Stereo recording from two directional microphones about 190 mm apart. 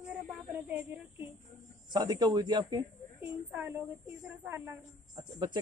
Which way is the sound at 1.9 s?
20° right (ahead or behind).